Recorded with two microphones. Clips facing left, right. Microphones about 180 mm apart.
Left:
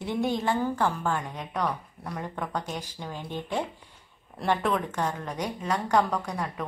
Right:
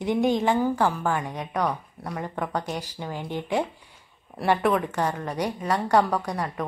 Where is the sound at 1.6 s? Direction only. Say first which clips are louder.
Right 3 dB; 5° right (ahead or behind).